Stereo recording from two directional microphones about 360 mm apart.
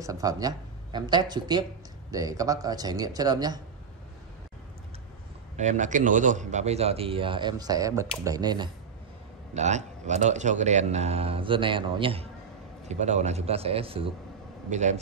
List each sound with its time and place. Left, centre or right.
0.0 s speech: centre
5.6 s speech: centre